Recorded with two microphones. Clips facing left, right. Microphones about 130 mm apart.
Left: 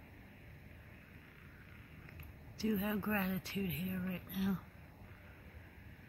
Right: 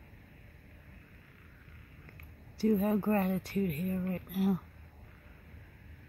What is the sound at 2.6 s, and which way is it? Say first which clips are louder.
A woman's voice: right 8 dB; 50° right (ahead or behind).